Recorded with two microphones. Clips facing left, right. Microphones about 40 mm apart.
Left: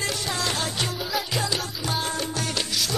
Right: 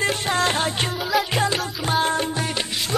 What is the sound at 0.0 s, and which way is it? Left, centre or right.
Music, right.